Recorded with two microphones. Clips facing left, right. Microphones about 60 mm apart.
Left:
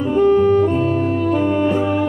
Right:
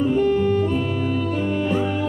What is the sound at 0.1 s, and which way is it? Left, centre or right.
Music, left.